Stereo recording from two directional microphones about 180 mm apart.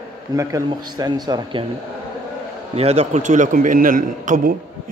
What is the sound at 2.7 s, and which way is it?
A man's voice, 35° right (ahead or behind).